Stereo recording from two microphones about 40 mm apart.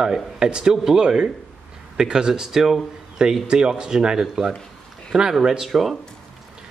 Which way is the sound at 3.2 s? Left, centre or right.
Right.